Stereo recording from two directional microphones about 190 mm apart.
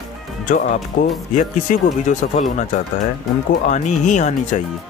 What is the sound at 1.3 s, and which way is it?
A man's voice, 45° left (ahead or behind).